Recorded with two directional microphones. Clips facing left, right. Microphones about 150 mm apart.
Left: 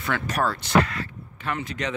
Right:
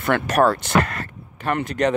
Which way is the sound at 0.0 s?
60° right (ahead or behind).